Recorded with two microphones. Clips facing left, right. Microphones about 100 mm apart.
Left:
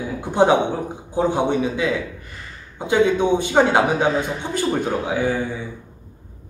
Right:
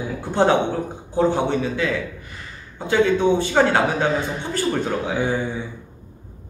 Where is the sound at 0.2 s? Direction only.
15° left (ahead or behind).